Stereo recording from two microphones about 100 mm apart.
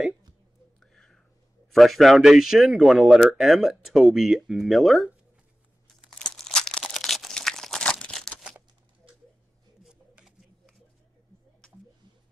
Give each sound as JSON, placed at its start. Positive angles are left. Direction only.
{"t": 0.7, "sound": "whispering", "side_deg": 5}
{"t": 1.7, "sound": "speech", "side_deg": 0}
{"t": 5.9, "sound": "crunch", "side_deg": 5}
{"t": 9.8, "sound": "shuffling cards", "side_deg": -5}